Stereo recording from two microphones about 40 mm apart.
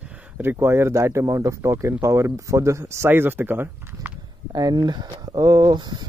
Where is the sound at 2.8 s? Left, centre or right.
Right.